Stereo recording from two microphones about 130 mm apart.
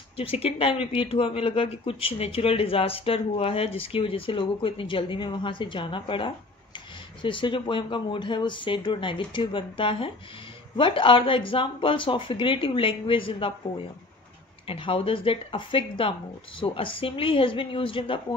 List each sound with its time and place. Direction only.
0.2 s speech: 50° left (ahead or behind)
14.7 s speech: 45° left (ahead or behind)